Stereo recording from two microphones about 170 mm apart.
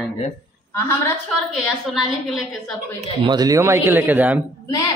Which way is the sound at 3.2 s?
25° right (ahead or behind).